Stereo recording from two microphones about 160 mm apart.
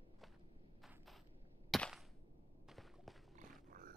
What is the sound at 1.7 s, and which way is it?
Cap gun, centre (ahead or behind).